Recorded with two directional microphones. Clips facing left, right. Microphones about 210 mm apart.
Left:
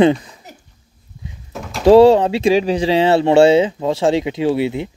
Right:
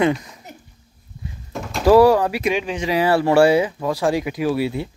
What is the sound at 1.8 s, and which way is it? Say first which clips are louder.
Speech: left 4 dB; 25° left (ahead or behind).